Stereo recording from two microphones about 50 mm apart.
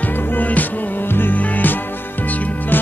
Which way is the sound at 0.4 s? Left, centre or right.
Left.